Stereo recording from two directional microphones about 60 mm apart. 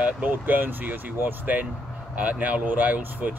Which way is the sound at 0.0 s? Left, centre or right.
Right.